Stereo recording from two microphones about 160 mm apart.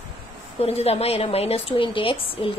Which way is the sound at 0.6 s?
40° left (ahead or behind).